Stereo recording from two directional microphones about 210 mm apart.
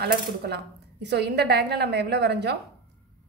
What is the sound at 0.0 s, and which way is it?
A woman's voice, 50° right (ahead or behind).